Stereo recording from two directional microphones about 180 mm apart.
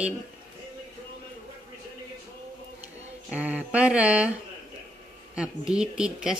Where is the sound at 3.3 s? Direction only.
10° right (ahead or behind).